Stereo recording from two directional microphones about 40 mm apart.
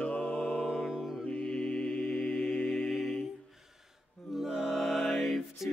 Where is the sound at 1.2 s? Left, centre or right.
Left.